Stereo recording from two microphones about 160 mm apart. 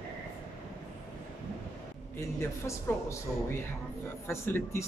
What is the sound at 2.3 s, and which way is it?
Speech, 15° left (ahead or behind).